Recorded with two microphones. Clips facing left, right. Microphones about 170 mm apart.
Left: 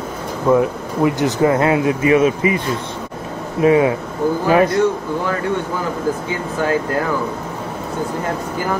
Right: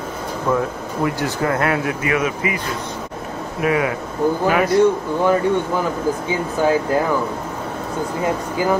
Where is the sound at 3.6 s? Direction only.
25° left (ahead or behind).